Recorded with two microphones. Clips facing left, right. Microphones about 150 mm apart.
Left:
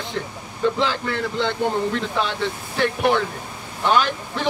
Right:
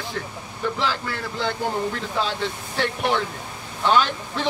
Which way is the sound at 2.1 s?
60° left (ahead or behind).